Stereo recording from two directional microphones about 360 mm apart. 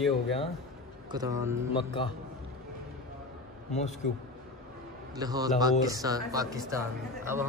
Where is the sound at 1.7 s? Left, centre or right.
Centre.